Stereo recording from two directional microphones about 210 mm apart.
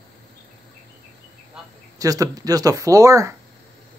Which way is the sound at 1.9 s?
15° right (ahead or behind).